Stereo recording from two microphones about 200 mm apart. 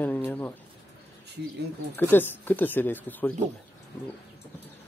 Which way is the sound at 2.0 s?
10° left (ahead or behind).